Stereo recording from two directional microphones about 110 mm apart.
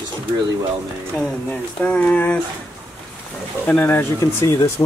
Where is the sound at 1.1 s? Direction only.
10° left (ahead or behind).